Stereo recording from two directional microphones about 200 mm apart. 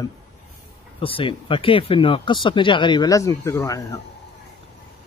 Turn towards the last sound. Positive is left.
turn(degrees=15)  # may be behind; listen again after turning